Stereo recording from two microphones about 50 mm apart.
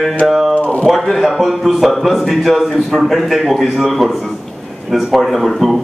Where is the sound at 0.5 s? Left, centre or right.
Left.